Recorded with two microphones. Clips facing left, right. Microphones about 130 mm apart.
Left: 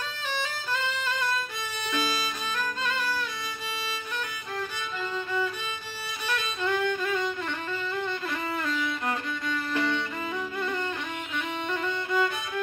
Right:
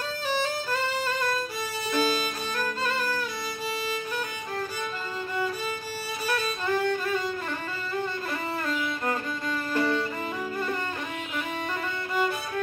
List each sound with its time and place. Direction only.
1.9 s violin: 40° right (ahead or behind)
6.2 s violin: 35° right (ahead or behind)
8.6 s music: 40° right (ahead or behind)